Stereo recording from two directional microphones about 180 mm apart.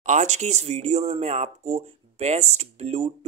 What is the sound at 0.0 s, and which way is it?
Speech, 40° right (ahead or behind).